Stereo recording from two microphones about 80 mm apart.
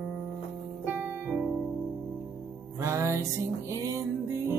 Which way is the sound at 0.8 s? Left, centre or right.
Right.